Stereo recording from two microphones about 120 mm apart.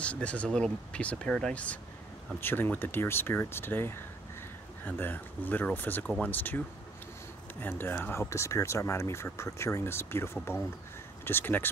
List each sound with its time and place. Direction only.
0.0 s speech: 10° left (ahead or behind)
7.6 s speech: 15° left (ahead or behind)